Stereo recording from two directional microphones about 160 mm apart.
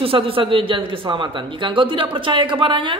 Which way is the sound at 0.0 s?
35° right (ahead or behind).